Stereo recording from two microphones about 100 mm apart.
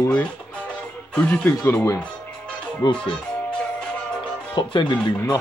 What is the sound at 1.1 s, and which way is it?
Speech, 10° left (ahead or behind).